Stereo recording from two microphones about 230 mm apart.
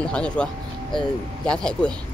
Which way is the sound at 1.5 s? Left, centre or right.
Centre.